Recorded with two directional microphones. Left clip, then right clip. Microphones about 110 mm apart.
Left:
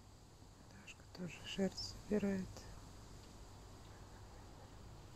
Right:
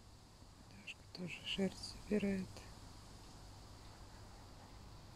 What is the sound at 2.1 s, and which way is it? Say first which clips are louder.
Speech: right 1 dB; 25° right (ahead or behind).